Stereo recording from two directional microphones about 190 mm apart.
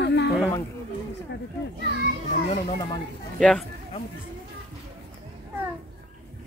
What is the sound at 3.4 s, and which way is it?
Speech, 5° left (ahead or behind).